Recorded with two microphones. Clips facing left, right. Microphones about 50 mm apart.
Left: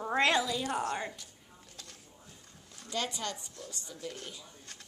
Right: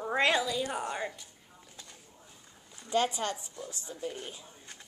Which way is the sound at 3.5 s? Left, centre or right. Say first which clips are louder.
Right 3 dB; centre.